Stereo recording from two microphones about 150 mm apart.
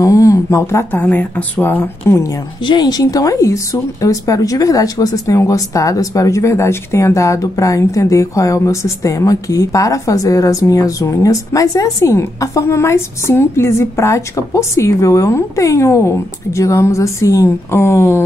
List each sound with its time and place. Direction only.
0.0 s speech: 20° left (ahead or behind)
2.6 s speech: 30° left (ahead or behind)